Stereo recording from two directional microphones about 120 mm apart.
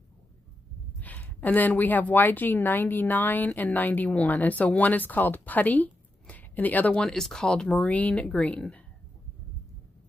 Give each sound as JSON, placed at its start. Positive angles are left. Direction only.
{"t": 0.9, "sound": "a woman's voice", "side_deg": 15}